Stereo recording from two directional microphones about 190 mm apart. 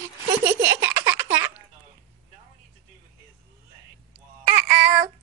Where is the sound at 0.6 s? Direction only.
10° right (ahead or behind).